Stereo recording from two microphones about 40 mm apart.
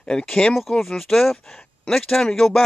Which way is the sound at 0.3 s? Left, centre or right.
Left.